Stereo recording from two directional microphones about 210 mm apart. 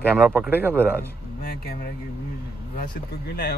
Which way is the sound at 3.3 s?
45° left (ahead or behind).